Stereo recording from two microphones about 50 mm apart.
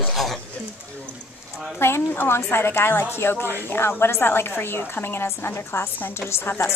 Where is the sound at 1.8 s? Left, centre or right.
Left.